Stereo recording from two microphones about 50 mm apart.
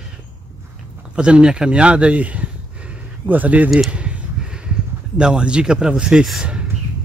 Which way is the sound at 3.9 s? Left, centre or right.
Right.